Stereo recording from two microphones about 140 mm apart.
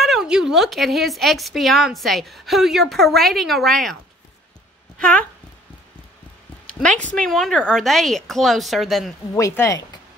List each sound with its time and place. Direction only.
0.0 s speech: 5° right (ahead or behind)
6.6 s a sound: 5° left (ahead or behind)
7.0 s speech: 10° left (ahead or behind)
9.3 s speech: 20° left (ahead or behind)